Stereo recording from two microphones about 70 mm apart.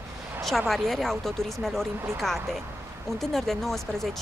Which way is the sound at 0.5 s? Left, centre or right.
Centre.